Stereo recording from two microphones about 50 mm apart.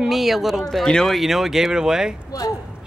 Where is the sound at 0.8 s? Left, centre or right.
Centre.